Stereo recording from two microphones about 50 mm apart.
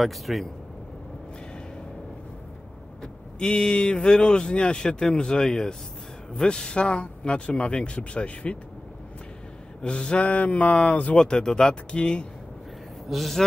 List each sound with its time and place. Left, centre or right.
0.0 s speech: centre
3.0 s speech: centre
9.8 s speech: centre
11.1 s speech: centre
13.1 s speech: centre